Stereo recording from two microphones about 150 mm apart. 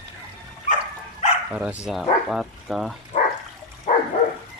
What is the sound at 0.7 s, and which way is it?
Dog, 50° left (ahead or behind).